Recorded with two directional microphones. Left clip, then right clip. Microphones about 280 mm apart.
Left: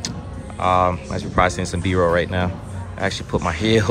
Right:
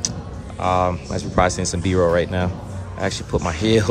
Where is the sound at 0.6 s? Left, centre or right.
Centre.